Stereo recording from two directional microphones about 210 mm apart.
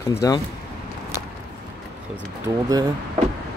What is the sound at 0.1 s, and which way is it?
Speech, 15° left (ahead or behind).